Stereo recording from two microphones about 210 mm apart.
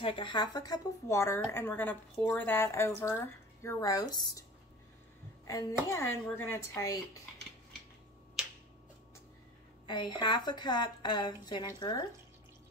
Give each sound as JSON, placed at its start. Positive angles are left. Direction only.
{"t": 0.0, "sound": "a child's voice", "side_deg": 25}
{"t": 9.8, "sound": "a woman's voice", "side_deg": 20}